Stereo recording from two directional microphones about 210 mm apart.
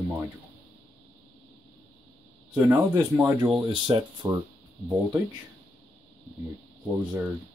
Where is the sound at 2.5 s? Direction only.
5° right (ahead or behind).